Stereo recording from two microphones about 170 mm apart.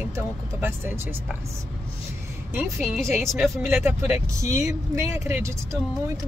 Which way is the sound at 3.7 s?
15° right (ahead or behind).